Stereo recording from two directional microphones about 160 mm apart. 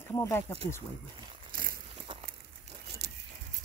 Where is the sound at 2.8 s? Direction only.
90° right.